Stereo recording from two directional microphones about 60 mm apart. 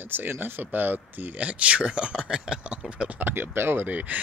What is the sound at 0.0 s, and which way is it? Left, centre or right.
Speech, right.